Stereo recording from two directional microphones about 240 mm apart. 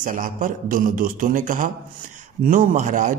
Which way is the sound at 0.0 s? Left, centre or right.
Right.